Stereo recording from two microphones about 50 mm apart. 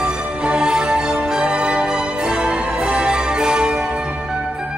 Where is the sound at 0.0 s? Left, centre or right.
Centre.